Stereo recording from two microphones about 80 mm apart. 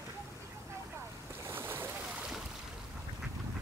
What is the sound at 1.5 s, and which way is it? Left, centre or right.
Boat, right.